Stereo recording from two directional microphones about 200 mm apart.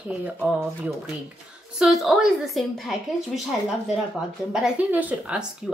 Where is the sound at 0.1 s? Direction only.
5° right (ahead or behind).